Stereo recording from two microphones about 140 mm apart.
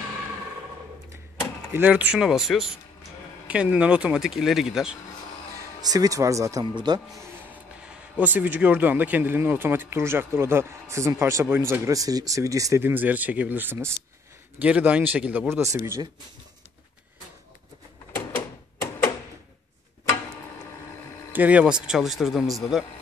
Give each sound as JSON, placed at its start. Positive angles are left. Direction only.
{"t": 1.7, "sound": "speech", "side_deg": -10}
{"t": 5.8, "sound": "speech", "side_deg": -25}
{"t": 7.8, "sound": "speech", "side_deg": -10}
{"t": 15.5, "sound": "speech", "side_deg": -20}
{"t": 18.1, "sound": "a sound", "side_deg": 15}
{"t": 21.3, "sound": "speech", "side_deg": -10}